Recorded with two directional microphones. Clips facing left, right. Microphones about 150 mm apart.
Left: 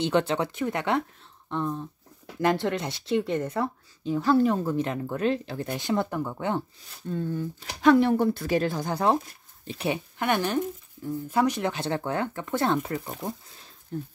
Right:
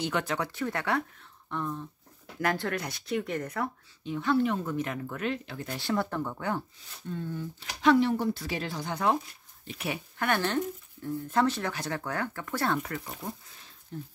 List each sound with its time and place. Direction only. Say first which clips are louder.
0.0 s speech: left 6 dB; 25° left (ahead or behind)
5.8 s speech: left 2 dB; 20° left (ahead or behind)
7.1 s speech: left 6 dB; 45° left (ahead or behind)
10.1 s speech: left 1 dB; 15° left (ahead or behind)
13.9 s speech: left 6 dB; 40° left (ahead or behind)